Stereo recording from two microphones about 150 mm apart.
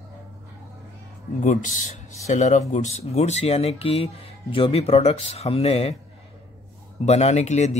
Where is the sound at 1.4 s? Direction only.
60° left (ahead or behind); by 5.9 s 40° left (ahead or behind).